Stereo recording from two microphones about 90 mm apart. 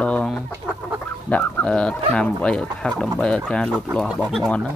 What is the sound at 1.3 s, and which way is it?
Speech, 15° left (ahead or behind).